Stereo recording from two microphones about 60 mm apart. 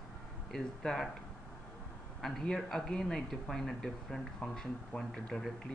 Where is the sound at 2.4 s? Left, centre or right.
Centre.